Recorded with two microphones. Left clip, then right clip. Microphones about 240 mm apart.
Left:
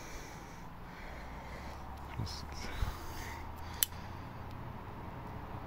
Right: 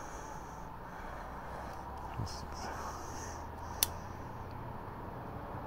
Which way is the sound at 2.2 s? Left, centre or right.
Left.